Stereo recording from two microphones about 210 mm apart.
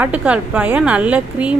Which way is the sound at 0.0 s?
5° right (ahead or behind).